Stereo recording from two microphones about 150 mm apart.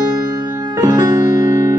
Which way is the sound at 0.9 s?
25° right (ahead or behind).